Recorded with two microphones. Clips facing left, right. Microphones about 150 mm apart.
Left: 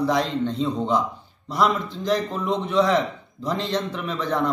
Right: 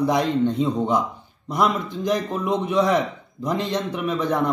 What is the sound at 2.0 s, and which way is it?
A man's voice, 15° right (ahead or behind).